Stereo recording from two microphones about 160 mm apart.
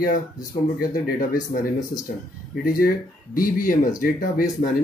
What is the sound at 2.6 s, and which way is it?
Speech, 65° left (ahead or behind).